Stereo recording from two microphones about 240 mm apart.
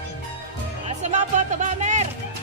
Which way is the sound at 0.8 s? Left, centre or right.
Right.